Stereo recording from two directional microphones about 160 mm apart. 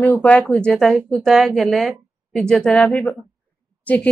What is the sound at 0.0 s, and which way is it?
A woman's voice, 10° left (ahead or behind).